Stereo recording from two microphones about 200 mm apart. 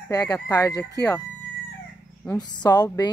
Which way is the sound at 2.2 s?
20° left (ahead or behind).